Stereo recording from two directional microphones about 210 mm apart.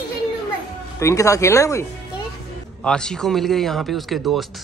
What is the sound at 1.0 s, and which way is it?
Speech, 15° left (ahead or behind).